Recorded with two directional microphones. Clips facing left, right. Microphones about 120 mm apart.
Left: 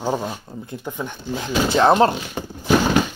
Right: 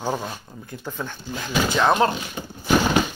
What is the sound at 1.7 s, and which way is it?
Speech, 35° left (ahead or behind).